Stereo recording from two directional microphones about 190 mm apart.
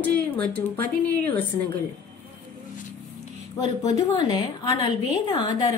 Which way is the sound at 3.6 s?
20° left (ahead or behind).